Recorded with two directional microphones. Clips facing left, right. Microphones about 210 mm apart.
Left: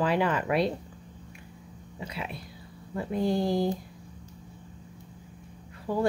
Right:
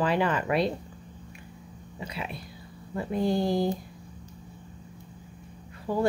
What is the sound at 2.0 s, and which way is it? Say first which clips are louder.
Speech: right 1 dB; centre (ahead or behind).